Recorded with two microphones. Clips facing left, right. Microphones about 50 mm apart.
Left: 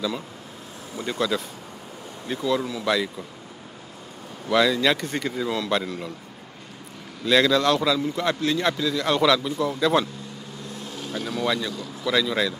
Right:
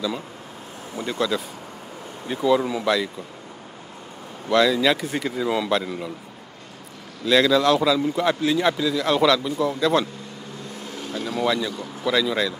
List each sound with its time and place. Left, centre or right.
1.0 s a man's voice: centre
2.8 s a man's voice: centre
4.5 s a man's voice: centre
7.2 s a man's voice: centre
10.9 s vehicle: right
11.4 s a man's voice: centre
11.7 s a man's voice: right
12.1 s a man's voice: centre